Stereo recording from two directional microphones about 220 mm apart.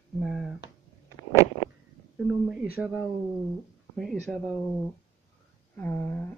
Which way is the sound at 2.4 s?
5° right (ahead or behind).